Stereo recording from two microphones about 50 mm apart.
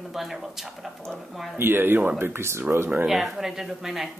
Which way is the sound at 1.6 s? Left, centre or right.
Right.